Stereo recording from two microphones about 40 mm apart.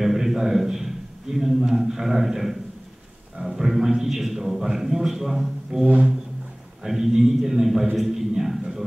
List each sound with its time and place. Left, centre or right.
0.0 s a man's voice: centre
5.9 s a sound: right
6.8 s a man's voice: centre